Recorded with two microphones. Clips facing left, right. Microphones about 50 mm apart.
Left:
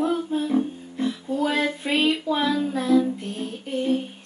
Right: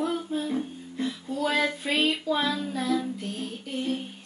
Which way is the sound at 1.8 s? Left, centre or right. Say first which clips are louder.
Left 3 dB; left.